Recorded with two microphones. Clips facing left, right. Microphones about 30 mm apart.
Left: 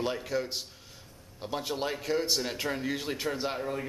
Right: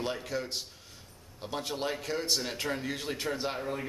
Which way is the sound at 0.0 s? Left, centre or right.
Centre.